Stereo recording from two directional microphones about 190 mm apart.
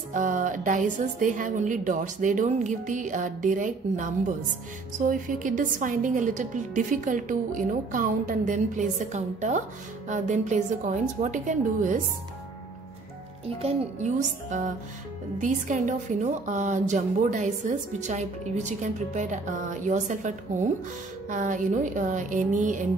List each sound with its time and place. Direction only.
0.1 s a woman's voice: 40° right (ahead or behind)
13.6 s a woman's voice: 35° right (ahead or behind)